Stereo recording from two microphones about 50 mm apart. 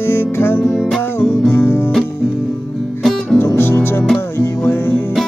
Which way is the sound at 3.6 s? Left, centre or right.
Left.